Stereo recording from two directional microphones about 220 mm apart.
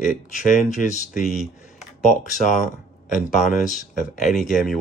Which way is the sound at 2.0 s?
35° left (ahead or behind).